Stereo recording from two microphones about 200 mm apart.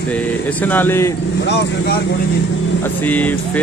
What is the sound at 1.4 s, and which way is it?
Speech, 55° left (ahead or behind).